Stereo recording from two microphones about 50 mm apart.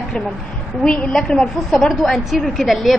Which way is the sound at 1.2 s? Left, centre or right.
Centre.